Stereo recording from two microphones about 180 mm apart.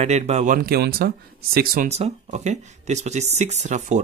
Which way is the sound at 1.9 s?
40° right (ahead or behind).